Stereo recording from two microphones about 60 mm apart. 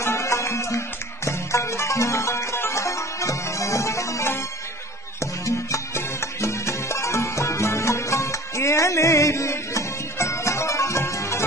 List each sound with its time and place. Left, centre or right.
0.0 s music: left